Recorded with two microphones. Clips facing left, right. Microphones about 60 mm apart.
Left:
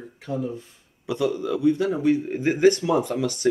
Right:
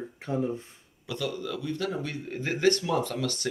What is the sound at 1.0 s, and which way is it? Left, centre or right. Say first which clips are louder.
A man's voice: left 8 dB; left.